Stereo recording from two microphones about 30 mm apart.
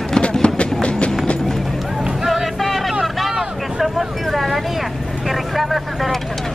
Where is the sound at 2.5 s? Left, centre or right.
Centre.